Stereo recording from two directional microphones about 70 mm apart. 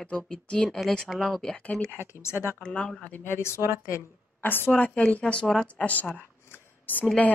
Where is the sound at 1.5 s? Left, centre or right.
Centre.